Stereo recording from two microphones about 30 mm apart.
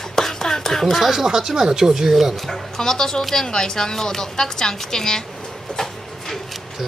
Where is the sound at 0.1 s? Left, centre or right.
Centre.